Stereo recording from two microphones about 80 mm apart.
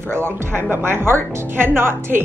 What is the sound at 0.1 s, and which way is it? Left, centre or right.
A woman's voice, right.